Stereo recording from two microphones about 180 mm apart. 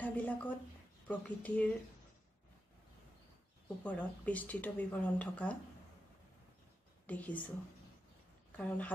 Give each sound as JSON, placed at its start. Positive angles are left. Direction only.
{"t": 0.0, "sound": "speech", "side_deg": 10}
{"t": 3.6, "sound": "speech", "side_deg": 10}
{"t": 7.1, "sound": "speech", "side_deg": 10}
{"t": 8.5, "sound": "speech", "side_deg": 10}